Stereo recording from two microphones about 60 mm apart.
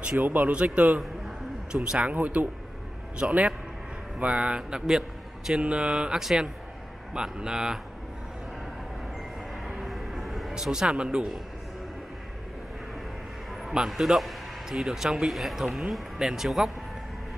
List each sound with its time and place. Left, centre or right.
0.2 s speech: right; by 7.8 s centre
9.8 s vehicle: centre
10.5 s speech: centre
13.5 s a man's voice: centre